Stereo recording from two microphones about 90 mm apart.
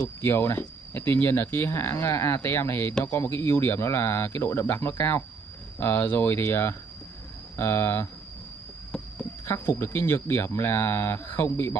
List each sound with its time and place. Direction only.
0.2 s speech: 25° left (ahead or behind)
9.5 s speech: 25° left (ahead or behind)